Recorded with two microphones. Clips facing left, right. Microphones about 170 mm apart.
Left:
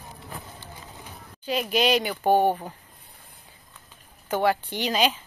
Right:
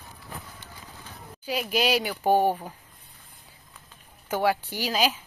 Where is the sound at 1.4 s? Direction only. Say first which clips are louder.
Left 2 dB; 10° right (ahead or behind).